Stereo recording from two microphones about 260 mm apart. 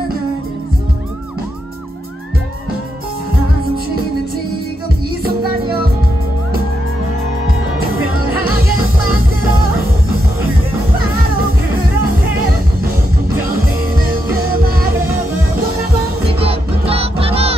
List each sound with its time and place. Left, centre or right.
5.2 s music: right
16.3 s music: right